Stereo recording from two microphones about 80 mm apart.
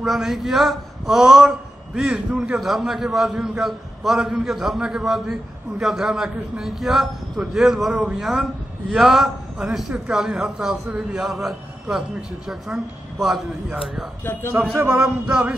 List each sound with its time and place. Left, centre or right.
0.0 s a man's voice: centre
14.8 s a man's voice: right
15.0 s a man's voice: centre